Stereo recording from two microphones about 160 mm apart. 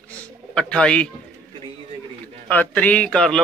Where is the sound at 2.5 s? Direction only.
10° left (ahead or behind).